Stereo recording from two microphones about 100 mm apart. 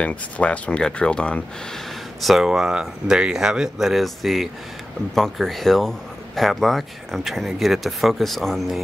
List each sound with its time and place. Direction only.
0.0 s speech: 10° left (ahead or behind)
2.2 s speech: 5° right (ahead or behind)